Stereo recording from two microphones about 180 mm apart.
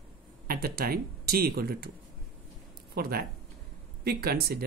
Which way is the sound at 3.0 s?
60° right (ahead or behind).